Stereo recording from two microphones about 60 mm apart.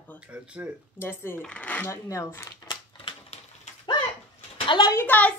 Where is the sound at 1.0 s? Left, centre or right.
Left.